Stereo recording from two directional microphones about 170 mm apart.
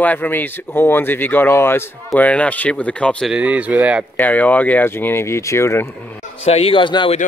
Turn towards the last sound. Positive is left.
turn(degrees=30)  # may be behind; listen again after turning